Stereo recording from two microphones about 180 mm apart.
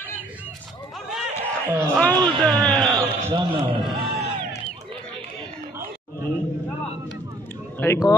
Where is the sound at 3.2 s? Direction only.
30° right (ahead or behind).